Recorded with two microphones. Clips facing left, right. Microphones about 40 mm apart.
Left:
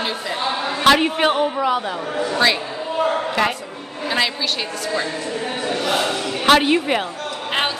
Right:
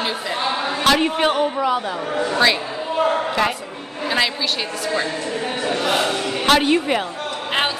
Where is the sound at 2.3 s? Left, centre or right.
Centre.